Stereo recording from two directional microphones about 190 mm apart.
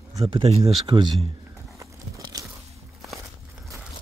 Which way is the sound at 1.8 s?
15° right (ahead or behind).